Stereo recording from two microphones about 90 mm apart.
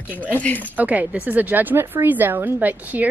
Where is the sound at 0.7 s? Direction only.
15° right (ahead or behind).